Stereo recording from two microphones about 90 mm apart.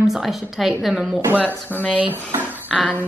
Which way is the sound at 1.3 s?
15° left (ahead or behind).